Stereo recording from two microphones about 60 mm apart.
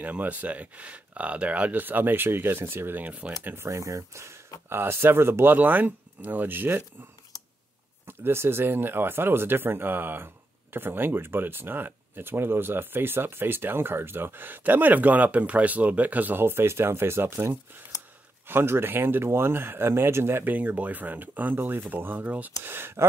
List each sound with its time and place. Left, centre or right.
0.0 s speech: right
3.1 s speech: right
3.6 s speech: right
4.6 s speech: right
8.1 s speech: right
20.4 s speech: right
22.6 s speech: right